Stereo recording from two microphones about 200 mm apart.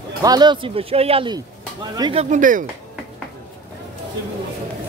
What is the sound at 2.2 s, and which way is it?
Speech, 40° right (ahead or behind).